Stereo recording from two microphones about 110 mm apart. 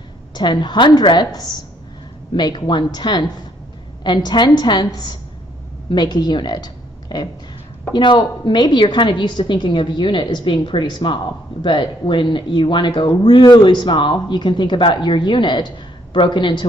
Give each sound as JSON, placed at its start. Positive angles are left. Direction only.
{"t": 0.3, "sound": "a woman's voice", "side_deg": 45}